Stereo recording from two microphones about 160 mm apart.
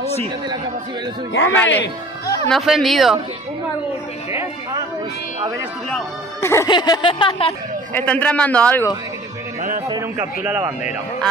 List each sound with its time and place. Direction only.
1.5 s a man's voice: 10° left (ahead or behind)
2.5 s speech: centre (ahead or behind)
6.4 s a man's voice: 15° left (ahead or behind)
6.7 s speech: 30° left (ahead or behind)
7.9 s a man's voice: 10° left (ahead or behind)
10.4 s speech: 10° right (ahead or behind)